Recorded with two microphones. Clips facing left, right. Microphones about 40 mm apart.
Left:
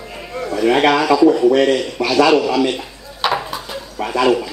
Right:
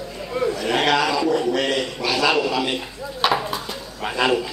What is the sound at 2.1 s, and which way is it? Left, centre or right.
Speech, centre.